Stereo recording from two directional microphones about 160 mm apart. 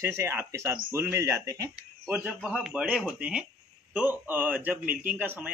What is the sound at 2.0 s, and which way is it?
Speech, 5° right (ahead or behind).